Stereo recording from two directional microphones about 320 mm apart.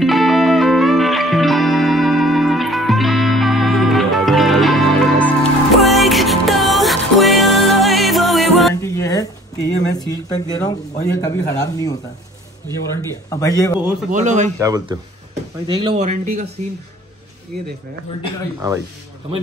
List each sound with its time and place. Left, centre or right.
0.0 s music: centre
13.3 s speech: centre
14.1 s speech: right
14.6 s speech: centre
18.6 s speech: centre